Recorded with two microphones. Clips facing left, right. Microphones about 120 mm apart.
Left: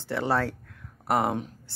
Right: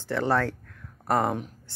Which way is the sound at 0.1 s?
15° left (ahead or behind).